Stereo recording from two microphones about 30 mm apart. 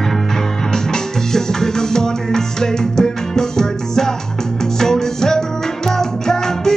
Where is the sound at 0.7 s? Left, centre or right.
Centre.